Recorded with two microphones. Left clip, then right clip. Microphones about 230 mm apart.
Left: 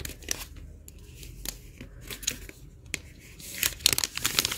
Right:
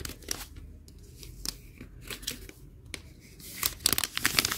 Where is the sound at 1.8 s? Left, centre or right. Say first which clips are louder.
Left 1 dB; centre.